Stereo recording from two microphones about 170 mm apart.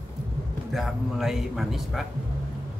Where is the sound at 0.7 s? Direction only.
Centre (ahead or behind).